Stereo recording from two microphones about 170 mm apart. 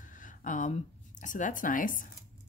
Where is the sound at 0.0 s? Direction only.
50° left (ahead or behind).